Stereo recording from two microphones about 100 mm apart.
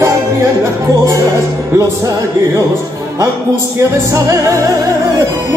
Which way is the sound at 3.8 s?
30° right (ahead or behind).